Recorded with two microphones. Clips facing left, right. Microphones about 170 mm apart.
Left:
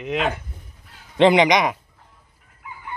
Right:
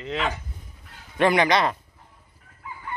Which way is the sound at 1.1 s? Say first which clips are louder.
Left 5 dB; 20° left (ahead or behind).